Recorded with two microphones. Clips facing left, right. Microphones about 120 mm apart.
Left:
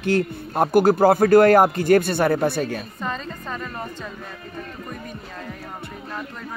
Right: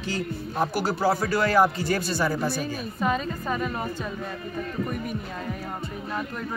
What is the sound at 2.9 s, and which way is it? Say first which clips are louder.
Speech: right 4 dB; 5° right (ahead or behind).